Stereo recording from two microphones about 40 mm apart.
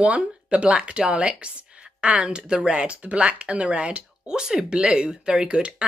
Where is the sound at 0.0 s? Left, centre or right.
Right.